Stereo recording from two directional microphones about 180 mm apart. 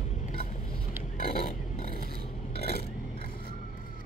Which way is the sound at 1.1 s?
55° left (ahead or behind).